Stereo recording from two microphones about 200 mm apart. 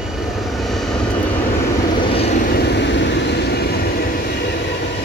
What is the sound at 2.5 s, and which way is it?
Vehicle, 55° left (ahead or behind).